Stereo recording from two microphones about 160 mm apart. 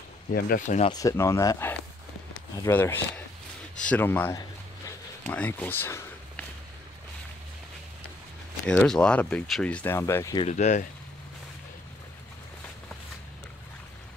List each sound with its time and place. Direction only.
0.3 s speech: 65° left (ahead or behind)
0.9 s speech: 20° left (ahead or behind)
4.4 s a sound: 20° left (ahead or behind)
5.3 s speech: 10° left (ahead or behind)
8.6 s speech: 5° left (ahead or behind)
10.5 s speech: 45° left (ahead or behind)